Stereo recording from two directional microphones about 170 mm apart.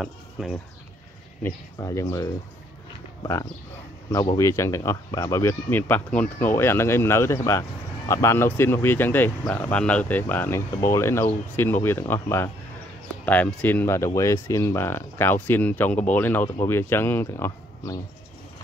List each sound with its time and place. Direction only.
0.4 s speech: centre (ahead or behind)
1.4 s speech: 20° left (ahead or behind)
4.1 s speech: 20° left (ahead or behind)